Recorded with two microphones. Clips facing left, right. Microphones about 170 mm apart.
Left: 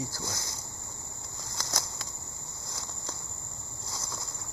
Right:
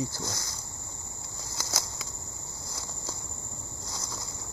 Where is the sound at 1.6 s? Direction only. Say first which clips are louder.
Even; 5° right (ahead or behind).